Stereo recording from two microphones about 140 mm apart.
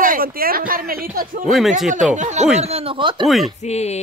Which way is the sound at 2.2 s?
60° right (ahead or behind).